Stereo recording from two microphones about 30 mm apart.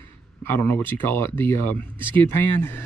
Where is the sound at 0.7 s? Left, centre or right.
Left.